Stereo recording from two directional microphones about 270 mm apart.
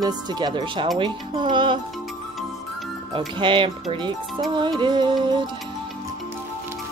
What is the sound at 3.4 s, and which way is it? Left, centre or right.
Speech, centre.